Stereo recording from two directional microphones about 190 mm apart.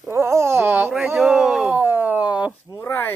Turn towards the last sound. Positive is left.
turn(degrees=10)  # may be behind; listen again after turning